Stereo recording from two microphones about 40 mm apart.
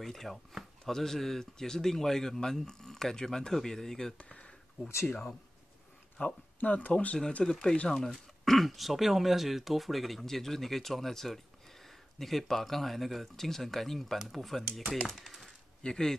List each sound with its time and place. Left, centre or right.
0.0 s speech: centre
4.2 s a sound: left
5.0 s speech: left
6.2 s speech: left
7.4 s speech: centre
15.8 s speech: centre